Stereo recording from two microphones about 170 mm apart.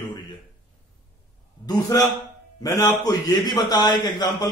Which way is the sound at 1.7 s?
20° left (ahead or behind).